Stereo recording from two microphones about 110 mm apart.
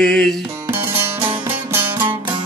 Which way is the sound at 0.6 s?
20° right (ahead or behind).